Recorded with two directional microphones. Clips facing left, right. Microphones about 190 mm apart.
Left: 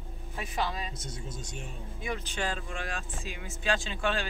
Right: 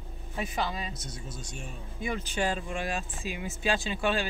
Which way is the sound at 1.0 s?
20° left (ahead or behind).